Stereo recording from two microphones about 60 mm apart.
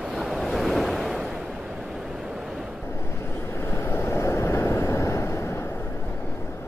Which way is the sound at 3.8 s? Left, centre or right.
Left.